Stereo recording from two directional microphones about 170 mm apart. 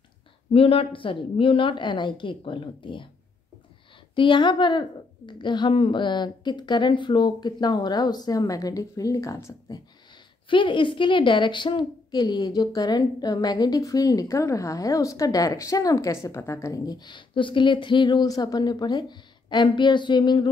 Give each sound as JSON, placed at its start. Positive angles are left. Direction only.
{"t": 0.5, "sound": "a woman's voice", "side_deg": 35}
{"t": 4.1, "sound": "a woman's voice", "side_deg": 30}
{"t": 10.5, "sound": "a woman's voice", "side_deg": 30}